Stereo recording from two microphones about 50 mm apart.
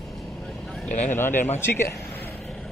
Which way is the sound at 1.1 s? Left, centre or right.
Left.